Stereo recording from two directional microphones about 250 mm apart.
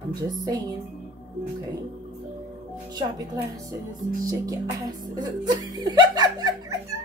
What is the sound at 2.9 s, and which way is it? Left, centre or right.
Speech, centre.